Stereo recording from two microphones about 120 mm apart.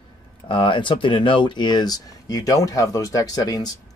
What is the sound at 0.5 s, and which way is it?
Speech, 45° left (ahead or behind).